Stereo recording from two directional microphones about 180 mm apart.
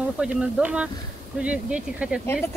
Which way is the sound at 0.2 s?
5° right (ahead or behind).